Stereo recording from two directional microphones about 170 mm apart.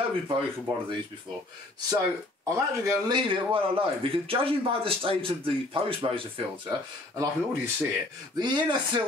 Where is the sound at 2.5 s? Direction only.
20° right (ahead or behind).